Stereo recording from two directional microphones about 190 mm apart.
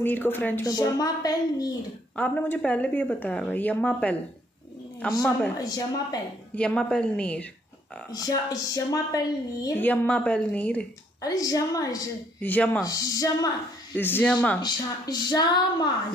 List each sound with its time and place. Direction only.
0.0 s a woman's voice: 10° left (ahead or behind)
2.1 s a woman's voice: 10° left (ahead or behind)
5.6 s speech: 20° left (ahead or behind)
6.5 s a woman's voice: 5° left (ahead or behind)
8.1 s a woman's voice: 20° left (ahead or behind)
11.1 s a woman's voice: 20° left (ahead or behind)
14.6 s speech: 20° left (ahead or behind)